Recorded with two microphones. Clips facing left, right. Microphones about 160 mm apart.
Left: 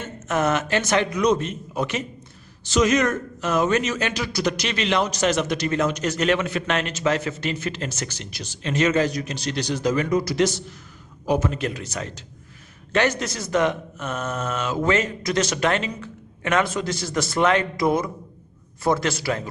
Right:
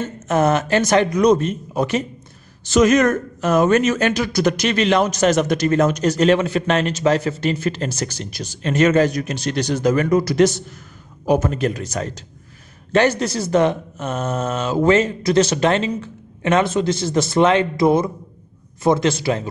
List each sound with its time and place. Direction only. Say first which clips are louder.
0.0 s speech: right 5 dB; 35° right (ahead or behind)
2.6 s a man's voice: right 5 dB; 50° right (ahead or behind); by 19.4 s 25° right (ahead or behind)